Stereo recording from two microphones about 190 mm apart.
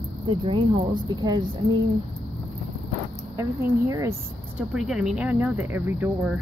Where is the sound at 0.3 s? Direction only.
25° right (ahead or behind).